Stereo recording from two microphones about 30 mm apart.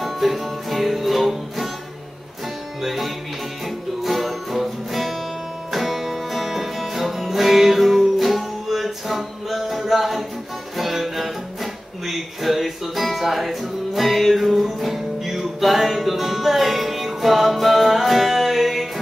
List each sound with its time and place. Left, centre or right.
0.0 s music: centre
2.8 s music: centre
8.6 s a sound: centre
10.8 s music: centre